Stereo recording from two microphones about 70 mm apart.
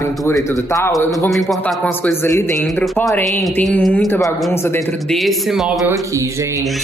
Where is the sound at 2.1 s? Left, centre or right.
Left.